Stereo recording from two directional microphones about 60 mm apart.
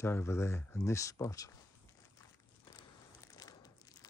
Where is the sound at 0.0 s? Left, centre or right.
Left.